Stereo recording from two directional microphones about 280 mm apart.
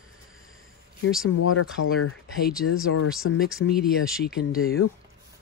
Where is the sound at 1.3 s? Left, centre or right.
Left.